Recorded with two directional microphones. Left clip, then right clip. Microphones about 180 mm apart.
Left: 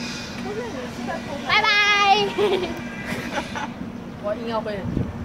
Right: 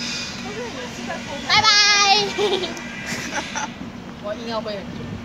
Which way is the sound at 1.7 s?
10° left (ahead or behind).